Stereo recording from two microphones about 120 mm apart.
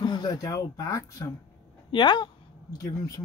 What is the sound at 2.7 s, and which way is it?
Speech, 30° left (ahead or behind).